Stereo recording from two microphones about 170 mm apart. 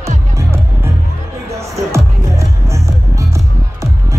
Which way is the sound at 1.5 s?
15° right (ahead or behind).